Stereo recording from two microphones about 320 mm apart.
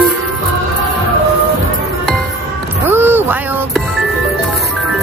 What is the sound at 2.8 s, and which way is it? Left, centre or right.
Music, centre.